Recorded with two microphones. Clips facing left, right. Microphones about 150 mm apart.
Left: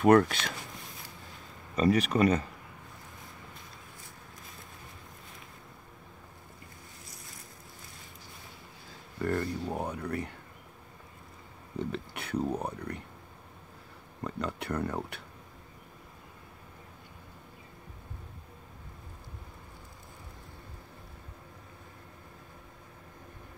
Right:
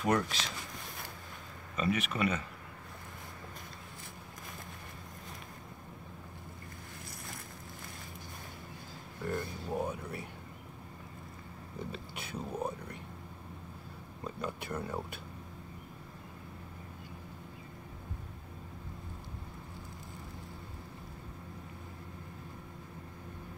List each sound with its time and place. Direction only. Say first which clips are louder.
0.0 s speech: left 9 dB; 55° left (ahead or behind)
1.8 s speech: left 7 dB; 35° left (ahead or behind)
9.2 s speech: left 6 dB; 65° left (ahead or behind)
11.8 s speech: left 6 dB; 65° left (ahead or behind)
14.2 s speech: left 4 dB; 70° left (ahead or behind)